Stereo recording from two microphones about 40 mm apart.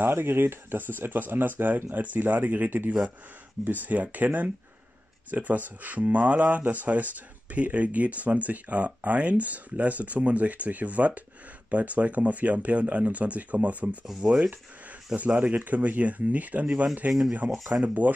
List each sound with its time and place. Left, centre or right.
0.0 s speech: right
14.2 s speech: centre
15.3 s speech: right
17.4 s speech: centre
17.8 s speech: right